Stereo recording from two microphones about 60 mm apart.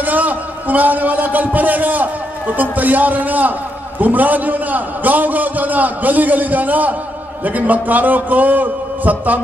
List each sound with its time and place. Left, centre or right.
0.0 s a man's voice: right